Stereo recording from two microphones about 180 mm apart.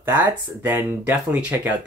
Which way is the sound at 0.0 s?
10° right (ahead or behind).